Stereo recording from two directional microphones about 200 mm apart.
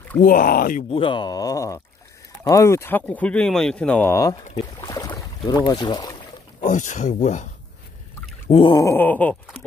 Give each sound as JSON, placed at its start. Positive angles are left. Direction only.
{"t": 0.2, "sound": "speech", "side_deg": 45}
{"t": 0.8, "sound": "speech", "side_deg": 25}
{"t": 4.7, "sound": "boat", "side_deg": 15}
{"t": 6.6, "sound": "speech", "side_deg": 40}
{"t": 8.5, "sound": "speech", "side_deg": 25}